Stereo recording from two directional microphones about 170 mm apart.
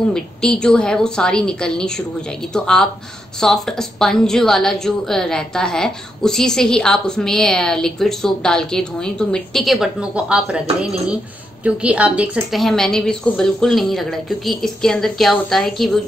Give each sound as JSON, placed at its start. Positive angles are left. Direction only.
{"t": 0.1, "sound": "a woman's voice", "side_deg": 5}